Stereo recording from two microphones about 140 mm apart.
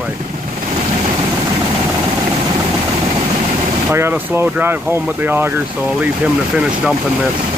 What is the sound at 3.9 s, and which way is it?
Speech, 15° right (ahead or behind).